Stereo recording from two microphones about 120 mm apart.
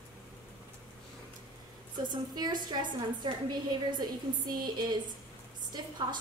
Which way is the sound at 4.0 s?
35° right (ahead or behind).